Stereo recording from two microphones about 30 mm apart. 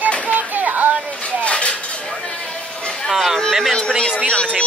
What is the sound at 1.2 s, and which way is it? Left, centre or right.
Dishes, left.